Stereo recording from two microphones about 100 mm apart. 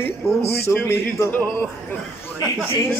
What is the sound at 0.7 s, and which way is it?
Speech, 25° left (ahead or behind).